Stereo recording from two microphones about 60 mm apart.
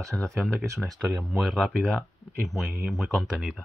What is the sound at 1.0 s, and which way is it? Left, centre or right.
Speech, centre.